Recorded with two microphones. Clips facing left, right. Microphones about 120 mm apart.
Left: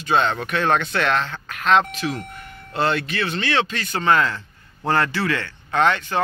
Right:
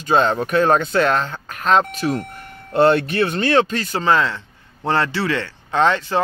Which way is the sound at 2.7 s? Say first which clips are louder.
Right 7 dB; 50° right (ahead or behind).